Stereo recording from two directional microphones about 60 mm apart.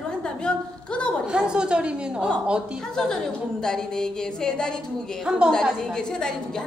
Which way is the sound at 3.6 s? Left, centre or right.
Centre.